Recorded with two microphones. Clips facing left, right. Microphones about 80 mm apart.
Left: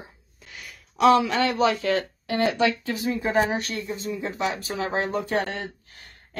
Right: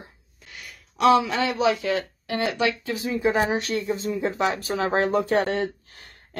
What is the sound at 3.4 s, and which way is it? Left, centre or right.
Speech, right.